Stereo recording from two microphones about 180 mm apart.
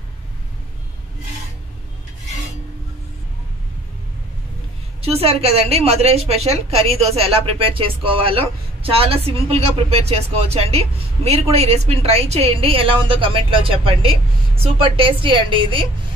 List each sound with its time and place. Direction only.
5.0 s speech: 35° right (ahead or behind)